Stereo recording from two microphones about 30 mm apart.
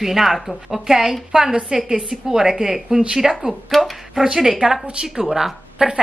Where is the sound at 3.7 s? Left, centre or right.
Centre.